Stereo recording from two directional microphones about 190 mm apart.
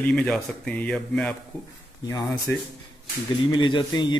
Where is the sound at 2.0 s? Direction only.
20° left (ahead or behind).